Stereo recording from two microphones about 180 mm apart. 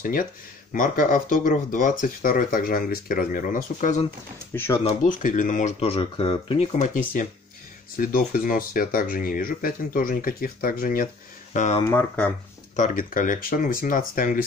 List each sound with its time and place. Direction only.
0.0 s speech: 50° left (ahead or behind)
4.5 s speech: 15° left (ahead or behind)
5.0 s speech: 45° left (ahead or behind)